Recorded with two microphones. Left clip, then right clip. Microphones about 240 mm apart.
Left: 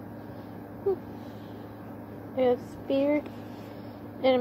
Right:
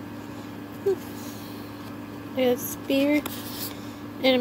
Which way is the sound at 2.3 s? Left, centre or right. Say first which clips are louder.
Right 1 dB; right.